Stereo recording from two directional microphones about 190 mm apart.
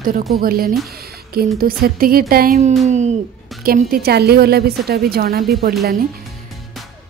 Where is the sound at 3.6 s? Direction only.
50° right (ahead or behind).